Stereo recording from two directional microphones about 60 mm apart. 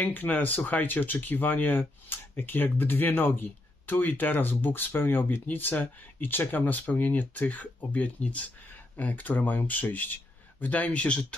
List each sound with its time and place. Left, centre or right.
0.0 s speech: left